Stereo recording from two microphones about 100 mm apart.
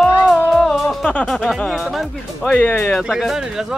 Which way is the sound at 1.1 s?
15° left (ahead or behind).